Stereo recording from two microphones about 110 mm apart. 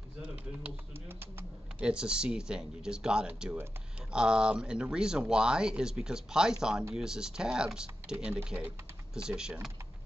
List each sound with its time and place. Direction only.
0.2 s speech: 15° right (ahead or behind)
1.8 s speech: 10° right (ahead or behind)